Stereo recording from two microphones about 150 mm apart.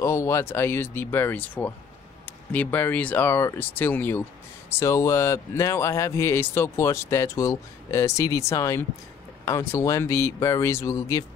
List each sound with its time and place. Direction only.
0.0 s speech: 20° left (ahead or behind)